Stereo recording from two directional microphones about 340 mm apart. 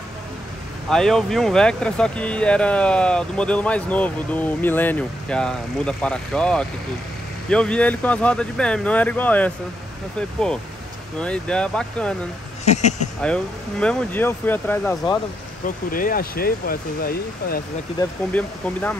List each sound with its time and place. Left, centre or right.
0.8 s speech: centre
11.1 s speech: centre
12.6 s speech: left
13.2 s speech: centre
15.6 s speech: left
17.9 s speech: centre